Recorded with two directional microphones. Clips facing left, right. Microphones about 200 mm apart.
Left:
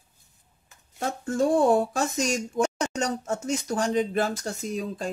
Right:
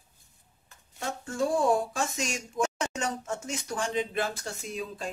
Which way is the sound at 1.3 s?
40° left (ahead or behind).